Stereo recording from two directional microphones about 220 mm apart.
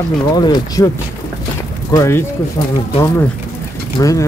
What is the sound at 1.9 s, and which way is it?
Speech, 15° left (ahead or behind).